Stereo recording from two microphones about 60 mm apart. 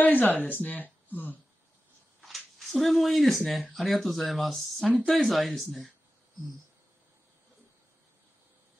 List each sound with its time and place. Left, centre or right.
0.0 s speech: left
2.2 s speech: centre